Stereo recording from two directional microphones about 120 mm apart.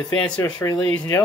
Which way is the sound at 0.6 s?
30° left (ahead or behind).